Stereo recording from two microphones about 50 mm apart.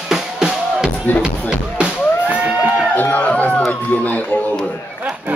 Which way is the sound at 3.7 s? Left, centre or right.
Left.